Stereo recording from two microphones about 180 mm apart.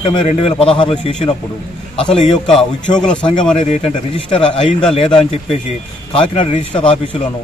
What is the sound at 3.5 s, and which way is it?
Speech, 30° left (ahead or behind).